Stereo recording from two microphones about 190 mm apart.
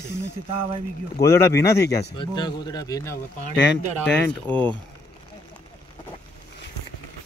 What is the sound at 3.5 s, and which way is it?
Speech, 5° left (ahead or behind).